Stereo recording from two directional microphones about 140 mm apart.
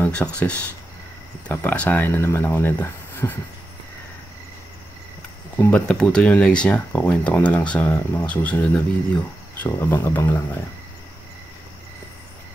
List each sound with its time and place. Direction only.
0.0 s speech: 10° left (ahead or behind)
5.6 s speech: 10° left (ahead or behind)